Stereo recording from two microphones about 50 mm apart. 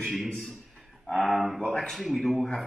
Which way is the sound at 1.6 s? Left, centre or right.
Centre.